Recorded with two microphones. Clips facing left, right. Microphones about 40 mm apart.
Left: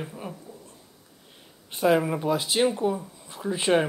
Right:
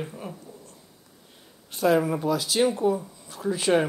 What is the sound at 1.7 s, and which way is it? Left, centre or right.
Speech, centre.